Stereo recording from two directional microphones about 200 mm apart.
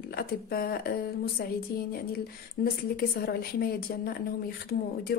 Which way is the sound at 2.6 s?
50° left (ahead or behind).